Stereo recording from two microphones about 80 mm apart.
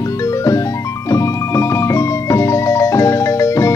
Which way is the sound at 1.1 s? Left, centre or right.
Left.